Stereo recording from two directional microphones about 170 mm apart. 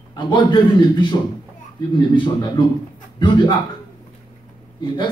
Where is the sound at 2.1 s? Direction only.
30° left (ahead or behind).